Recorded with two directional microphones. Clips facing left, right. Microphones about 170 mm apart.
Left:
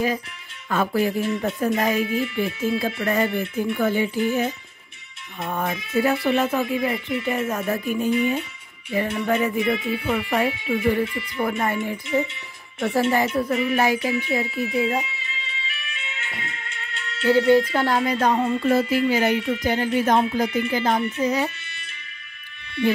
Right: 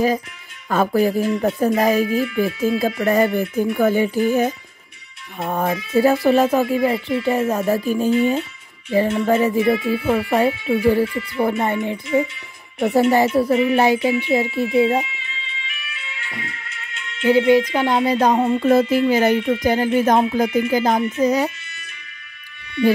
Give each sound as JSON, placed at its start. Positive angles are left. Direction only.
{"t": 0.7, "sound": "speech", "side_deg": -40}
{"t": 2.6, "sound": "music", "side_deg": -40}
{"t": 5.7, "sound": "speech", "side_deg": -35}
{"t": 13.1, "sound": "speech", "side_deg": -30}
{"t": 15.6, "sound": "music", "side_deg": 25}
{"t": 17.2, "sound": "music", "side_deg": -15}
{"t": 18.1, "sound": "music", "side_deg": -35}